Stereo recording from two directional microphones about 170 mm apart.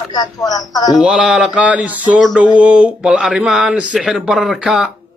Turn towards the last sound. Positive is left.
turn(degrees=-5)  # may be behind; listen again after turning